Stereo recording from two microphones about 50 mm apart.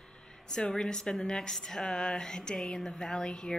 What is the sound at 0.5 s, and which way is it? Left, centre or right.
A woman's voice, centre.